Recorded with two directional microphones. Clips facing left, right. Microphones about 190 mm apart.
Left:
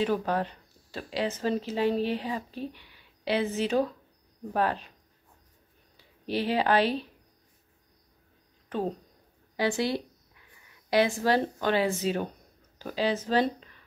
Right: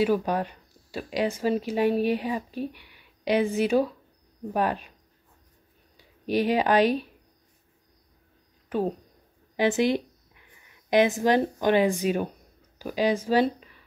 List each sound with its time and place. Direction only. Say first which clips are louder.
0.0 s speech: right 3 dB; 10° right (ahead or behind)
5.9 s speech: right 5 dB; 15° right (ahead or behind)
8.6 s a sound: right 4 dB; 10° right (ahead or behind)
10.9 s speech: right 3 dB; 20° right (ahead or behind)